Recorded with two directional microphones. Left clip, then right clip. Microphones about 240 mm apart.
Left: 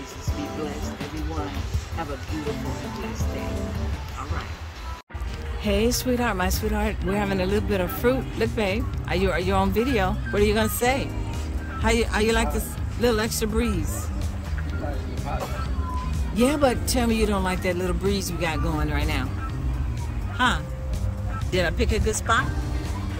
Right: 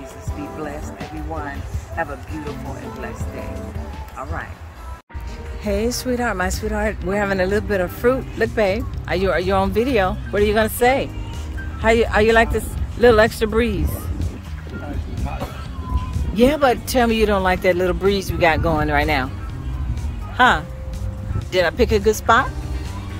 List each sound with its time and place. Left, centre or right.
5.6 s speech: centre
16.3 s speech: centre
20.3 s speech: centre